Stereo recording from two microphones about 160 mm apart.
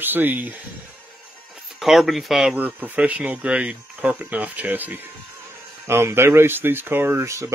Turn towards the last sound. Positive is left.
turn(degrees=-20)  # may be behind; listen again after turning